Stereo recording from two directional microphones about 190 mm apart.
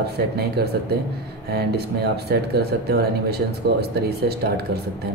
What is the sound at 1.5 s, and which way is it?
Speech, 55° right (ahead or behind).